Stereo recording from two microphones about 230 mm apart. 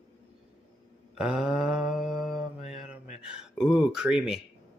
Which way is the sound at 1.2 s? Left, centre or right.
Centre.